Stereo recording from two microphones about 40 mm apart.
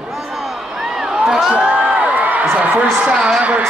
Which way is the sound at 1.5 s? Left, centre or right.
Right.